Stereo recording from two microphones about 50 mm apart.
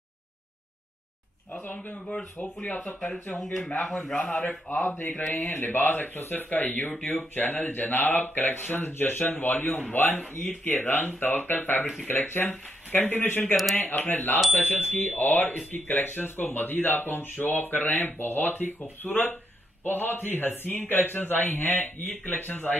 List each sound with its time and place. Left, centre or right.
1.7 s speech: left
2.4 s speech: left
3.4 s a man's voice: centre
4.2 s speech: left
4.8 s speech: left
6.9 s speech: left
7.3 s speech: left